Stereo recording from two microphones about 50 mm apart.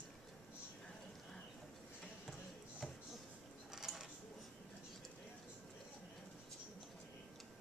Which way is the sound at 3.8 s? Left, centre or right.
Centre.